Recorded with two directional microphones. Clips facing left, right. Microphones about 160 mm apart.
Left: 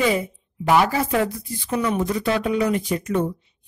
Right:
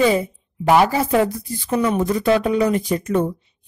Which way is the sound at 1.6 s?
40° right (ahead or behind).